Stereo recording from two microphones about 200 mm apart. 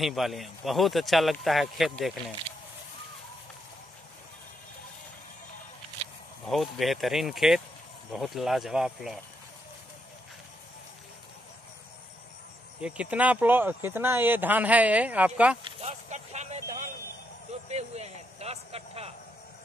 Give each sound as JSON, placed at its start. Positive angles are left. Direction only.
{"t": 0.0, "sound": "a man's voice", "side_deg": 0}
{"t": 6.4, "sound": "a man's voice", "side_deg": 0}
{"t": 12.8, "sound": "speech", "side_deg": -5}
{"t": 15.6, "sound": "speech", "side_deg": -35}